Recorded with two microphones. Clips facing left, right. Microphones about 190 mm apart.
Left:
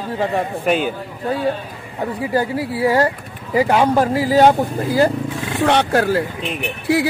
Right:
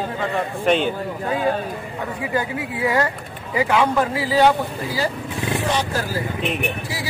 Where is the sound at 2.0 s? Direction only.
35° left (ahead or behind).